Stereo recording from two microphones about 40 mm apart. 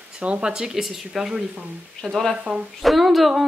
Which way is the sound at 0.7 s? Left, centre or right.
Centre.